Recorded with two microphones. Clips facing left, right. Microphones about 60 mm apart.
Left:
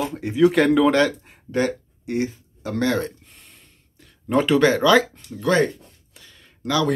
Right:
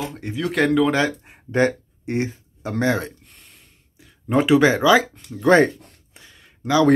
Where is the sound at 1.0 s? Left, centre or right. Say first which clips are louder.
Left 1 dB; centre.